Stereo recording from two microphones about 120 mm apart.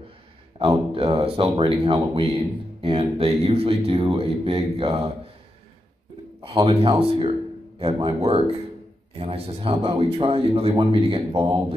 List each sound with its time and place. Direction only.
0.6 s a man's voice: 50° right (ahead or behind)
6.5 s a man's voice: 55° right (ahead or behind)